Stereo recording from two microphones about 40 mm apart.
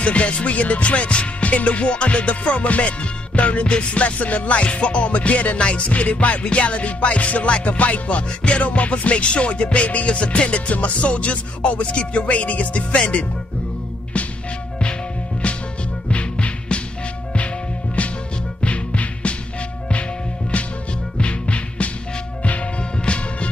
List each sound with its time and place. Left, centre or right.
0.0 s music: left
15.4 s music: left
18.0 s music: left
20.5 s music: left